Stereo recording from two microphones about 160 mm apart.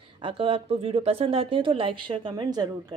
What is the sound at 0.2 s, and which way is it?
A woman's voice, 35° right (ahead or behind).